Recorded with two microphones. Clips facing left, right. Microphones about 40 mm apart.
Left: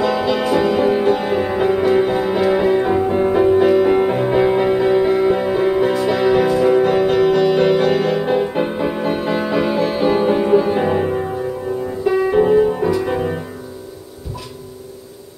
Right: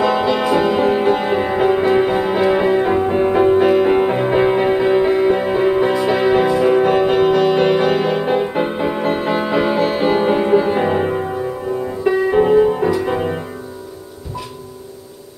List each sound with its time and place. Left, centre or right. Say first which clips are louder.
0.0 s music: right 1 dB; right
12.3 s music: right 1 dB; right